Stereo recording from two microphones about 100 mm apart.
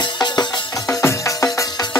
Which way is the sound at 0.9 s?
30° left (ahead or behind).